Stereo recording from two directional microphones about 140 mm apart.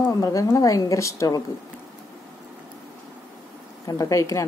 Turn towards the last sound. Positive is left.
turn(degrees=25)  # may be behind; listen again after turning